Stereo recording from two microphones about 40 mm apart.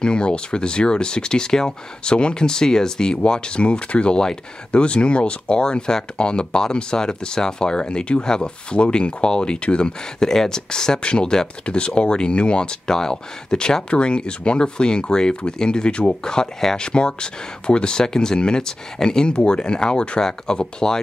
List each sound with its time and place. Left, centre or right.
0.0 s speech: left